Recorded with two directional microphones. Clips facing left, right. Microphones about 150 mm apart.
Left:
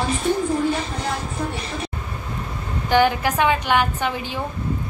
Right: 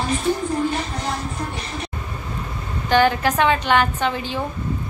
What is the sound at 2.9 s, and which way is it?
A woman's voice, 15° left (ahead or behind).